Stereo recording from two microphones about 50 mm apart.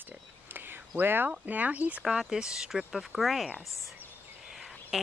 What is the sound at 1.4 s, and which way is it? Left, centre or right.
Speech, right.